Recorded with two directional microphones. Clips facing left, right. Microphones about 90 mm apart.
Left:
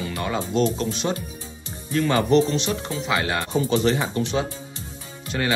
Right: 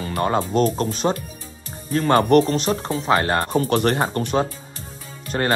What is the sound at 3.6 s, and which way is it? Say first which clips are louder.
Speech: right 2 dB; 55° right (ahead or behind).